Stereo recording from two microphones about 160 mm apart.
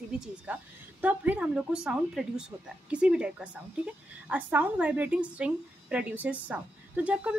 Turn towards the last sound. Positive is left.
turn(degrees=-10)  # may be behind; listen again after turning